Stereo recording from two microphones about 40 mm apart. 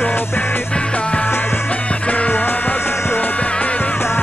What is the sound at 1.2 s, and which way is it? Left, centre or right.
Music, left.